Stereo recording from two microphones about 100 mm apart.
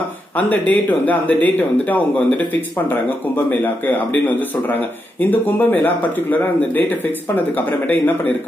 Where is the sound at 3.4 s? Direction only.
20° left (ahead or behind).